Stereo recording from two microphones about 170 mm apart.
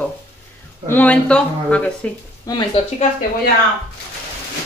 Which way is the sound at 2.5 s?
25° left (ahead or behind).